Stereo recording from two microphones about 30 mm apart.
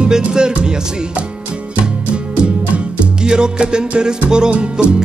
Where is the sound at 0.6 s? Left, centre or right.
Right.